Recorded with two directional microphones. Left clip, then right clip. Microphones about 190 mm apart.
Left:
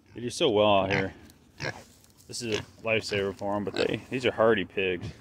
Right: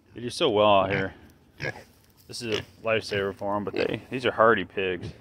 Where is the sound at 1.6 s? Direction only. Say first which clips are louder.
Right 2 dB; centre (ahead or behind).